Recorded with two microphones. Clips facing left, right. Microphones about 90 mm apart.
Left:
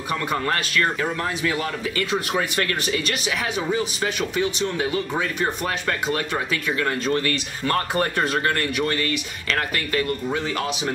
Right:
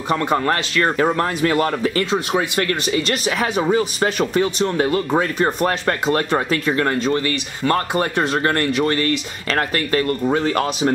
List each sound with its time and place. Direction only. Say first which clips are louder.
0.1 s speech: right 6 dB; 30° right (ahead or behind); by 2.0 s 45° right (ahead or behind)
2.0 s speech: right 4 dB; 20° right (ahead or behind)
3.3 s speech: right 7 dB; 40° right (ahead or behind)
7.0 s speech: right 3 dB; 25° right (ahead or behind); by 10.9 s 45° right (ahead or behind)